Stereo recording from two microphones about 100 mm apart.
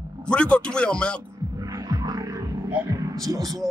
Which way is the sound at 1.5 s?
35° right (ahead or behind).